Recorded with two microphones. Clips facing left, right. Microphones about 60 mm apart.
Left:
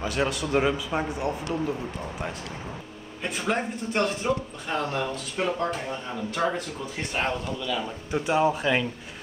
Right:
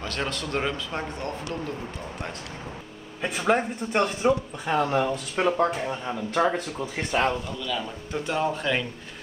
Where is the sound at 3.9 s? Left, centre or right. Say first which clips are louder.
Right 3 dB; centre.